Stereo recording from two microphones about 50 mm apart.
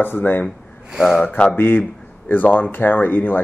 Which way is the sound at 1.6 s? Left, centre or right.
Left.